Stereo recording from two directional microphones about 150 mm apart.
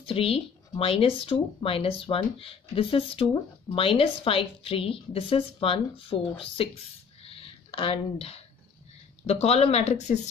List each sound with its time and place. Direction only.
0.0 s speech: 40° left (ahead or behind)
7.2 s a sound: 40° left (ahead or behind)
9.2 s speech: 45° left (ahead or behind)